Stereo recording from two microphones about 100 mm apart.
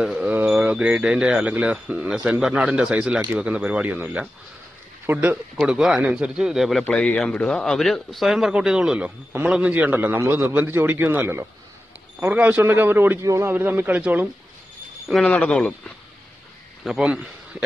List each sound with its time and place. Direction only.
0.0 s a sound: 5° right (ahead or behind)
0.4 s speech: 10° right (ahead or behind)
5.6 s speech: 5° right (ahead or behind)
6.8 s a man's voice: 15° left (ahead or behind); by 13.2 s 20° right (ahead or behind)
13.2 s speech: 30° right (ahead or behind)
13.5 s speech: 20° right (ahead or behind)
15.2 s speech: 10° left (ahead or behind)
16.8 s a man's voice: 5° right (ahead or behind)